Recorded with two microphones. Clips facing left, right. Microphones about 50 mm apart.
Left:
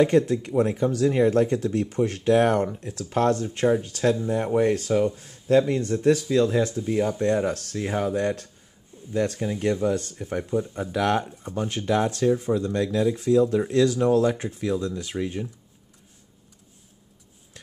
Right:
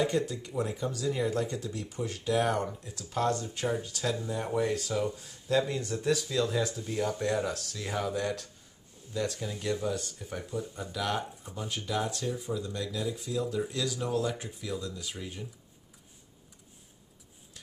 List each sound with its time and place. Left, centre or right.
0.6 s speech: left
10.4 s speech: left
10.7 s speech: left